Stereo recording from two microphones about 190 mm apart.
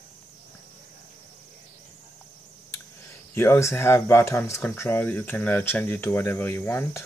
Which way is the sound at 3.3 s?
15° left (ahead or behind).